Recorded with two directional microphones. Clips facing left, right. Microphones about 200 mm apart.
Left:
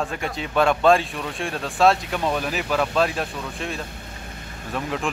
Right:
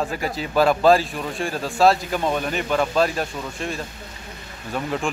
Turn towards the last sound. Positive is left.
turn(degrees=0)  # may be behind; listen again after turning